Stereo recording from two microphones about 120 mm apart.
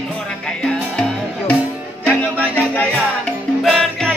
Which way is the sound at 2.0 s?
10° left (ahead or behind).